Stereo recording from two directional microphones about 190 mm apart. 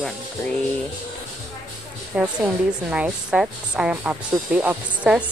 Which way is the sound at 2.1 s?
5° right (ahead or behind).